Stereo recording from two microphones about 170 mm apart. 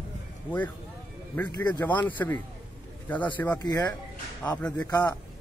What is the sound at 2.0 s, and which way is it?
Speech, 10° left (ahead or behind).